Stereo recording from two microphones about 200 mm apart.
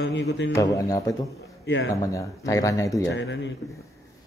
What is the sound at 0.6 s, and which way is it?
Speech, 15° left (ahead or behind).